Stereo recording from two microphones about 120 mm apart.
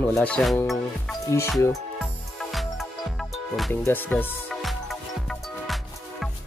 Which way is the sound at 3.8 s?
15° left (ahead or behind).